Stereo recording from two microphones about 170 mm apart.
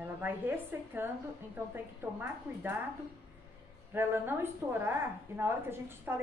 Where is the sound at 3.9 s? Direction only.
15° right (ahead or behind).